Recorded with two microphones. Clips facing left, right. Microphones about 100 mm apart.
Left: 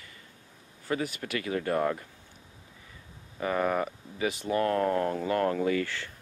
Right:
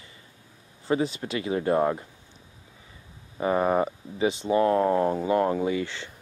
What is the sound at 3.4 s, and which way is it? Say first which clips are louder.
Speech: right 5 dB; 25° right (ahead or behind).